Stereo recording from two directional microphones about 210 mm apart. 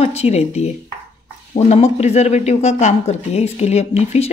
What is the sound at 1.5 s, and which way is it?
Speech, 30° left (ahead or behind).